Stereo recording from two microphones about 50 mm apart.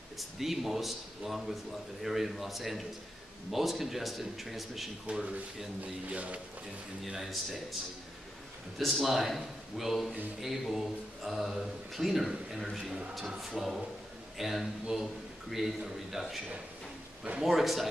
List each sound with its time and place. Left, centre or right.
0.2 s speech: centre
5.1 s speech: centre
7.1 s speech: centre
8.7 s speech: centre
17.4 s speech: centre